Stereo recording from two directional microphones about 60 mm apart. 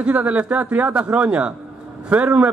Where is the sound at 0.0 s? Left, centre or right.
Right.